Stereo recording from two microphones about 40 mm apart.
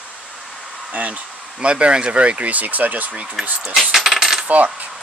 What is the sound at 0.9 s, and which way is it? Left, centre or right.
Speech, right.